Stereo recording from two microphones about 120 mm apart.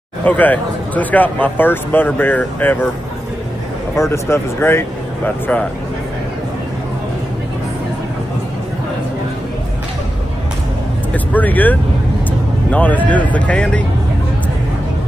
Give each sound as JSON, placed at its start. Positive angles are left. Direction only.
{"t": 0.2, "sound": "speech", "side_deg": 15}
{"t": 3.9, "sound": "speech", "side_deg": 25}
{"t": 11.3, "sound": "speech", "side_deg": 15}